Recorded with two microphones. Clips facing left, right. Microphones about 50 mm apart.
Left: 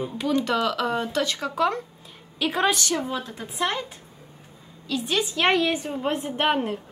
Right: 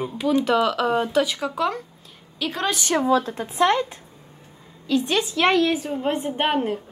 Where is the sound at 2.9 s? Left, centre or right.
Right.